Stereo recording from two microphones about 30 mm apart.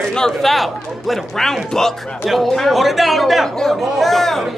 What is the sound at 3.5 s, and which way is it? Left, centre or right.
Speech, centre.